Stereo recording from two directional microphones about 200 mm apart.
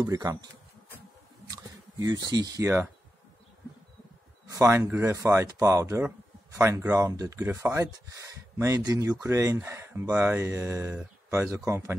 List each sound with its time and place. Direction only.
0.0 s speech: 15° right (ahead or behind)
1.5 s speech: 20° right (ahead or behind)
4.5 s speech: 15° right (ahead or behind)